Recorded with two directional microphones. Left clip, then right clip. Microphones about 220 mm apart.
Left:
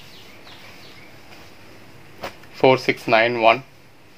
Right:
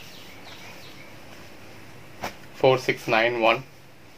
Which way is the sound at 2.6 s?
45° left (ahead or behind).